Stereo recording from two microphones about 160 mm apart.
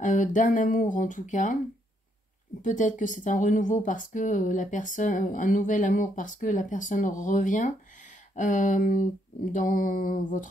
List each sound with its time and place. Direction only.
0.0 s speech: 50° left (ahead or behind)
2.6 s speech: 50° left (ahead or behind)
9.5 s a sound: 55° left (ahead or behind)